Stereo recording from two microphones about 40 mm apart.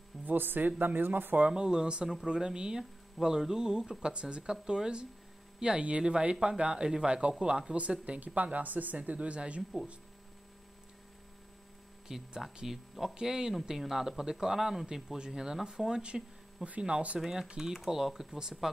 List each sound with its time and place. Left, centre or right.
0.2 s speech: right
1.5 s a man's voice: centre
4.4 s a man's voice: centre
8.0 s speech: right
12.1 s a man's voice: centre; by 17.2 s right
17.2 s a man's voice: centre